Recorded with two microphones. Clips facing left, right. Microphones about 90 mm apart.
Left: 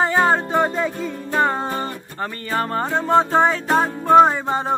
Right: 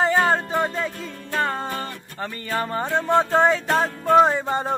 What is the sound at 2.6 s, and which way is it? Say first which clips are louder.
Music: left 2 dB; centre (ahead or behind).